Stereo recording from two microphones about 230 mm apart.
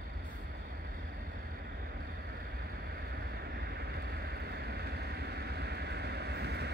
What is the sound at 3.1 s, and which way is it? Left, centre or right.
Boat, right.